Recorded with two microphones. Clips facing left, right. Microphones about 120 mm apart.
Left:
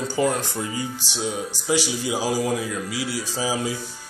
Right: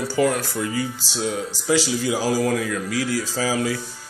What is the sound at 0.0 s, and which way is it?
Speech, 20° left (ahead or behind).